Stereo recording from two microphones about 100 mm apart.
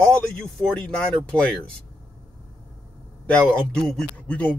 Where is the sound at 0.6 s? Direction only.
10° left (ahead or behind).